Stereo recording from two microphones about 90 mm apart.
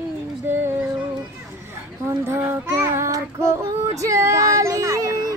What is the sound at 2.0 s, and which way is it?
Child singing, 30° right (ahead or behind).